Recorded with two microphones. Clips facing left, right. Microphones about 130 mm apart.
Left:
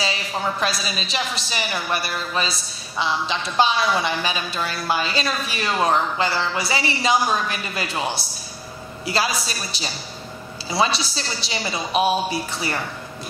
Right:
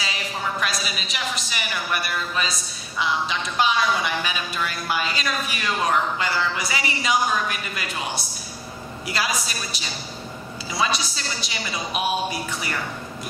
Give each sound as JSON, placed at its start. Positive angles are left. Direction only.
{"t": 0.0, "sound": "a woman's voice", "side_deg": 30}